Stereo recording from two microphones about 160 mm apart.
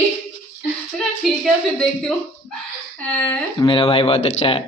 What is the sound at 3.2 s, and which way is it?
Speech, 10° left (ahead or behind).